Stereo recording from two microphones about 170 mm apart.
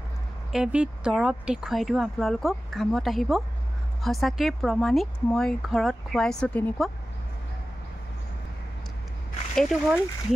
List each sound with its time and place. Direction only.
0.5 s speech: 5° right (ahead or behind)
9.6 s speech: centre (ahead or behind)